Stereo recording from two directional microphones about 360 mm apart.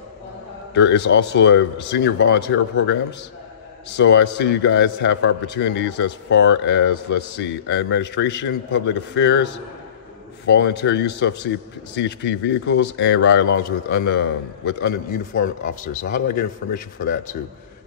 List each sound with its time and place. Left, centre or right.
0.7 s a man's voice: left